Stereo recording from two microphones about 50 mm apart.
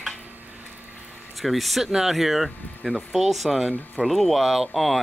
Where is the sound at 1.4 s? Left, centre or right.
Centre.